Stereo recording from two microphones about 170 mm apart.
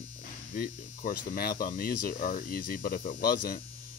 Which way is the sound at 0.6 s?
60° left (ahead or behind).